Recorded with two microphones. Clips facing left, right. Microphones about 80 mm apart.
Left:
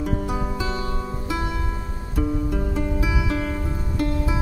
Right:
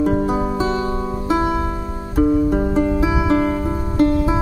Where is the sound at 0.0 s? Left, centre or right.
Right.